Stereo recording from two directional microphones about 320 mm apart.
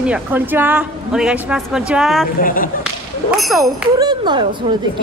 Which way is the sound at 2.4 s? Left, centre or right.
Left.